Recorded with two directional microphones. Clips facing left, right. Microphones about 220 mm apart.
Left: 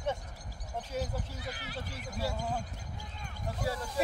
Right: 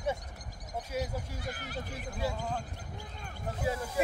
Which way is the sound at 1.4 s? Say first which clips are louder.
Right 2 dB; 45° right (ahead or behind).